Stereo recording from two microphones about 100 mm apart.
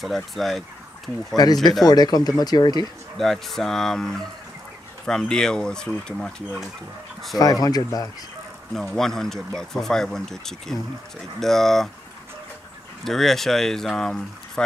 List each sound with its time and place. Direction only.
0.0 s speech: centre (ahead or behind)
1.3 s speech: 40° left (ahead or behind)
3.2 s speech: 5° left (ahead or behind)
7.6 s speech: 40° left (ahead or behind)
8.8 s speech: 5° left (ahead or behind)
13.0 s speech: centre (ahead or behind)